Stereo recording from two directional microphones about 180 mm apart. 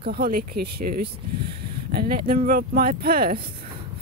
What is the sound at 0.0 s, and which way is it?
Speech, 55° right (ahead or behind).